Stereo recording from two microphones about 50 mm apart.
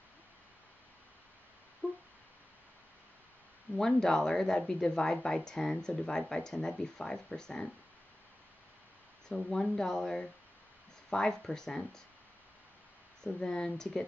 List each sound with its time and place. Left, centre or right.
1.8 s a sound: left
3.7 s a woman's voice: centre
9.5 s a woman's voice: centre
13.2 s a woman's voice: centre